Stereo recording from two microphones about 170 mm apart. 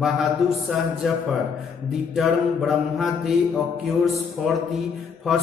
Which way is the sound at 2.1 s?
Centre (ahead or behind).